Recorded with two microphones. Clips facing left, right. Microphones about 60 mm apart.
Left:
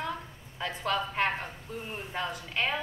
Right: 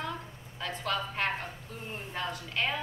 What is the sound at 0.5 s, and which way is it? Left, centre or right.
Speech, centre.